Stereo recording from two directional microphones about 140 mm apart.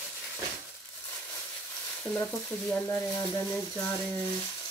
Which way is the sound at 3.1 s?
25° left (ahead or behind).